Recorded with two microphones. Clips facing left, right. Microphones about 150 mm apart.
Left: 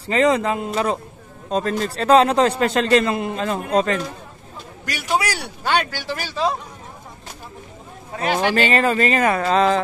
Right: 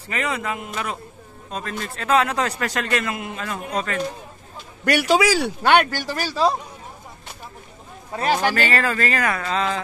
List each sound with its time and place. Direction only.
0.0 s a man's voice: 30° left (ahead or behind)
4.8 s speech: 80° right; by 6.5 s 40° right (ahead or behind)
8.5 s speech: 20° left (ahead or behind); by 9.8 s 40° left (ahead or behind)